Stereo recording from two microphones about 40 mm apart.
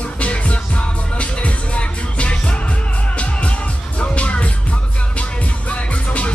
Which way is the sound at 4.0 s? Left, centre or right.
Left.